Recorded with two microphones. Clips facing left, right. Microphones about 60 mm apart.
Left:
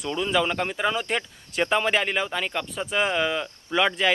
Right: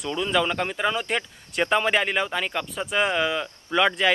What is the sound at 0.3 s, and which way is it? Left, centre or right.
Speech, centre.